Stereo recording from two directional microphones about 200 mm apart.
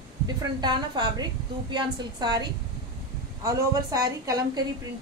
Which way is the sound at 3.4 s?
15° right (ahead or behind).